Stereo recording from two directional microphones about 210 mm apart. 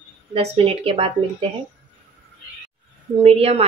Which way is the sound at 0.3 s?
25° right (ahead or behind).